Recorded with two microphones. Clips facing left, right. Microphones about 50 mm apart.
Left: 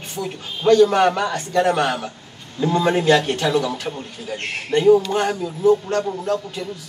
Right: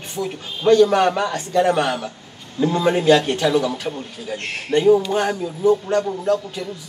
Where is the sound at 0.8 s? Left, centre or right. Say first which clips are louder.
Even; centre.